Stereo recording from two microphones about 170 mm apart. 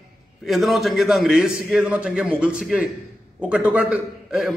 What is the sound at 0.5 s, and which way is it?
A man's voice, centre (ahead or behind).